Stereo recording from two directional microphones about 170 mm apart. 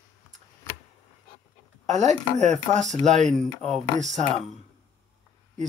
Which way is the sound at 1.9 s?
40° right (ahead or behind).